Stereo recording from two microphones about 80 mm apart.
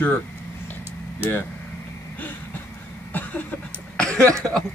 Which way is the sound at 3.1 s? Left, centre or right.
Left.